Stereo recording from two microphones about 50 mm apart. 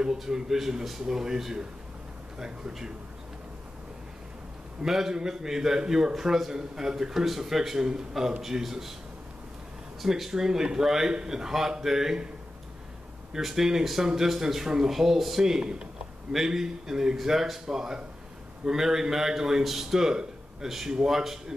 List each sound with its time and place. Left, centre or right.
0.0 s a man's voice: centre
4.8 s a man's voice: centre
10.0 s a man's voice: centre
13.3 s a man's voice: centre